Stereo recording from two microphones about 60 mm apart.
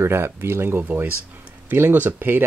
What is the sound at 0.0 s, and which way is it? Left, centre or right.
Speech, right.